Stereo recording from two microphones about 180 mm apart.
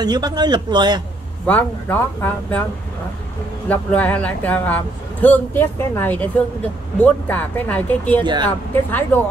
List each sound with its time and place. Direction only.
0.0 s a man's voice: 20° right (ahead or behind)
1.4 s speech: 10° left (ahead or behind)
3.6 s speech: 10° left (ahead or behind)
8.2 s a man's voice: 25° right (ahead or behind)
8.5 s speech: 10° left (ahead or behind)